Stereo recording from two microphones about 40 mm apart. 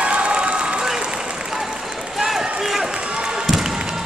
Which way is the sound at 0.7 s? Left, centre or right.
Centre.